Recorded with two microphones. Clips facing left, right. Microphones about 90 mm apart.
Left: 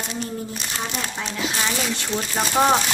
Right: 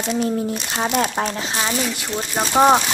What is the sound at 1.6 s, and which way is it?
Speech, 15° right (ahead or behind).